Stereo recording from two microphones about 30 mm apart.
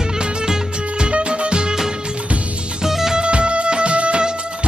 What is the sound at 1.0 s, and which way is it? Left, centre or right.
Music, right.